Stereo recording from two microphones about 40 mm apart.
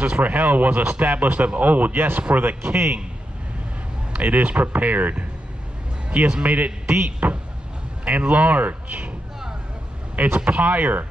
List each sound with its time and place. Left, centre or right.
0.0 s a man's voice: right
4.1 s a man's voice: right
6.0 s a man's voice: right
6.4 s a man's voice: right
6.9 s speech: right
10.1 s a man's voice: right